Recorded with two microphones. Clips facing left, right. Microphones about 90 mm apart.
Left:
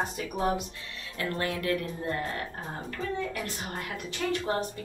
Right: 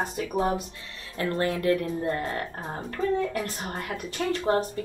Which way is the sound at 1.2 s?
30° right (ahead or behind).